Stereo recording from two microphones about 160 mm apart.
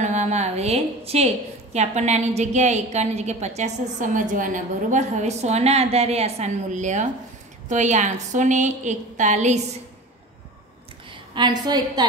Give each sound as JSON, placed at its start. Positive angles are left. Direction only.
{"t": 0.0, "sound": "a woman's voice", "side_deg": -45}
{"t": 11.3, "sound": "a woman's voice", "side_deg": -25}